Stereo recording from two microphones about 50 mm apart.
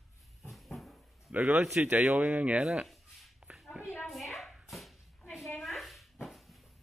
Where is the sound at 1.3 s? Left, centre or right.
Right.